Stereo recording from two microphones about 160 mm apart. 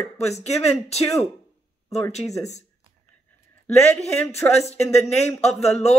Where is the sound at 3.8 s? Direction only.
10° left (ahead or behind).